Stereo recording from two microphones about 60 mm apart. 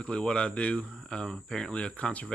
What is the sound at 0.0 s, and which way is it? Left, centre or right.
Speech, centre.